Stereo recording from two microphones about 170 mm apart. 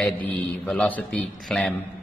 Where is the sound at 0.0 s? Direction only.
5° left (ahead or behind).